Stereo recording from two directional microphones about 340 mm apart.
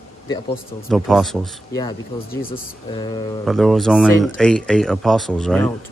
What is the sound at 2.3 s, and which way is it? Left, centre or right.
Speech, left.